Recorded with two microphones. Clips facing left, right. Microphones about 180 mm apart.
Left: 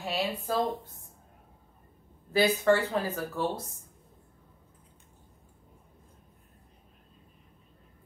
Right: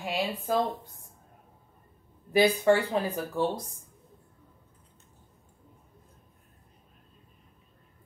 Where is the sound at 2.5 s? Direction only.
15° right (ahead or behind).